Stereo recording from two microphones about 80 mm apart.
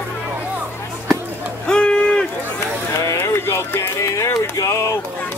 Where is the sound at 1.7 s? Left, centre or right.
Centre.